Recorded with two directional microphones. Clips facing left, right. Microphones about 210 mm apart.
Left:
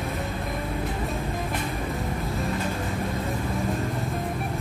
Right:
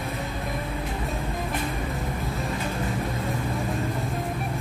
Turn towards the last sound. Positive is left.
turn(degrees=0)  # may be behind; listen again after turning